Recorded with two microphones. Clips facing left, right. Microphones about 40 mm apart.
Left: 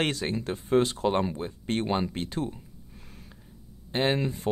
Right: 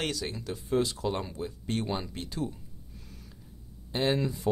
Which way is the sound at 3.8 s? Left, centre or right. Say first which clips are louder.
Left 2 dB; left.